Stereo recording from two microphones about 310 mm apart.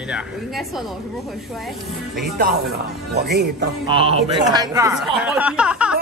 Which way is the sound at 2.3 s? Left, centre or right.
Right.